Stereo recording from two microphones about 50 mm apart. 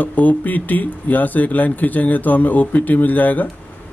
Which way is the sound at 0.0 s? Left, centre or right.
Left.